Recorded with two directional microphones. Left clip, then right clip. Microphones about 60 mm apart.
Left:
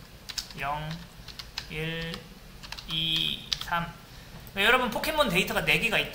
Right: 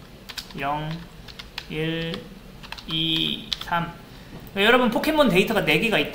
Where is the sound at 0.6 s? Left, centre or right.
Centre.